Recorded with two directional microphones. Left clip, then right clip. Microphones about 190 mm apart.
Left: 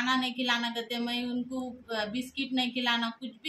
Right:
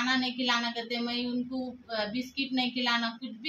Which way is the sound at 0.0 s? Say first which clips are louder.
Even; 10° left (ahead or behind).